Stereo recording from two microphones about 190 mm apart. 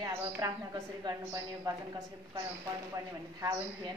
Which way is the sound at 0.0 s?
20° right (ahead or behind).